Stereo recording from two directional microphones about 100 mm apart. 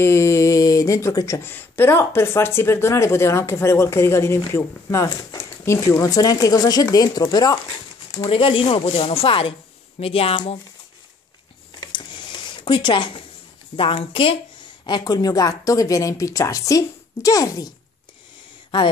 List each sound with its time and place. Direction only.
0.0 s speech: 25° left (ahead or behind); by 8.3 s 50° left (ahead or behind)
8.3 s speech: 65° left (ahead or behind)
11.8 s a sound: 50° left (ahead or behind)
13.7 s speech: 65° left (ahead or behind)
14.9 s speech: 45° left (ahead or behind)